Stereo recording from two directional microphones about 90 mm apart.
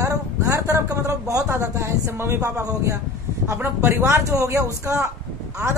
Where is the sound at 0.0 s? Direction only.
35° right (ahead or behind).